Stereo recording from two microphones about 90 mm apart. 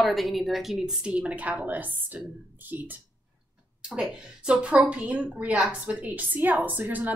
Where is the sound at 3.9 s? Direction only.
10° right (ahead or behind).